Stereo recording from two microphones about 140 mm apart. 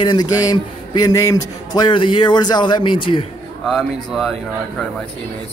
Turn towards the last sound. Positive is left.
turn(degrees=0)  # may be behind; listen again after turning